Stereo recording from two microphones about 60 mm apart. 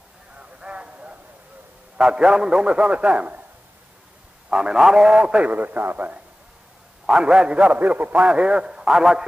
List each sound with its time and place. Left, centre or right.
0.4 s a sound: centre
2.0 s a man's voice: centre
4.5 s a man's voice: centre; by 6.1 s right
7.1 s a man's voice: centre